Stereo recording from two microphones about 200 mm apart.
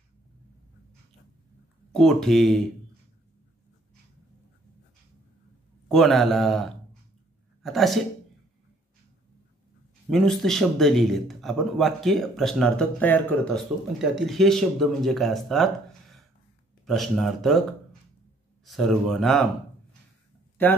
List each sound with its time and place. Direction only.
1.9 s a man's voice: centre (ahead or behind)
5.9 s a man's voice: centre (ahead or behind)
10.0 s a man's voice: centre (ahead or behind)
18.7 s a man's voice: centre (ahead or behind)
20.6 s speech: 10° left (ahead or behind)